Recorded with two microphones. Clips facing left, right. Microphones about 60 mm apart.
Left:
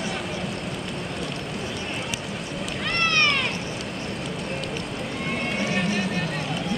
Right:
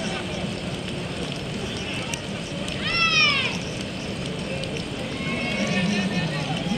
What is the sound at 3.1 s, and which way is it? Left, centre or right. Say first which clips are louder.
Cat: left 1 dB; centre.